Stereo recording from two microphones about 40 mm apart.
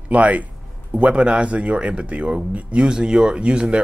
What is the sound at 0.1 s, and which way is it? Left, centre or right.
Speech, right.